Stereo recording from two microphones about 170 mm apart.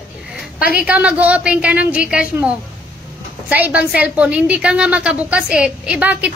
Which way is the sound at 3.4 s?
10° right (ahead or behind).